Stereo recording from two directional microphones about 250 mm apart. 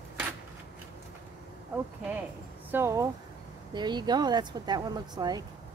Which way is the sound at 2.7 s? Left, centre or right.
Centre.